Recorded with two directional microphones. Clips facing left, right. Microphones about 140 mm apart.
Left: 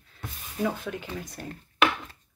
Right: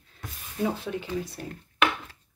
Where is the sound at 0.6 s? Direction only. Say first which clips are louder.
Right 1 dB; 30° right (ahead or behind).